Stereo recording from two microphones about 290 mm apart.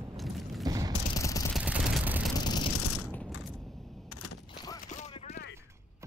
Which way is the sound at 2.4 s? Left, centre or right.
Centre.